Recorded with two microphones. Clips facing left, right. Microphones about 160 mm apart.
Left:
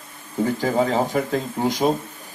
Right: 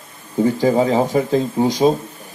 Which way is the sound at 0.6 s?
15° right (ahead or behind).